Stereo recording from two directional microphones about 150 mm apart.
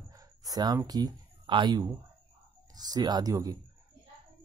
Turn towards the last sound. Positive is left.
turn(degrees=-25)  # may be behind; listen again after turning